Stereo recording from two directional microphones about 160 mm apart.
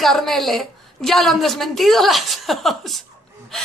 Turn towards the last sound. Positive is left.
turn(degrees=0)  # may be behind; listen again after turning